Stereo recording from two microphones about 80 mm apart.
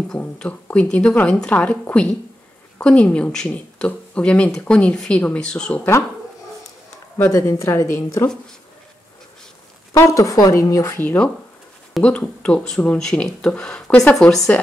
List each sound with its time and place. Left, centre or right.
0.2 s speech: centre
7.2 s speech: left
9.9 s speech: left
11.0 s speech: centre